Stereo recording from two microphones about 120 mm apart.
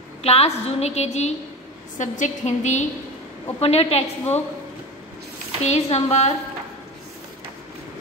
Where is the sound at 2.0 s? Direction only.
85° left.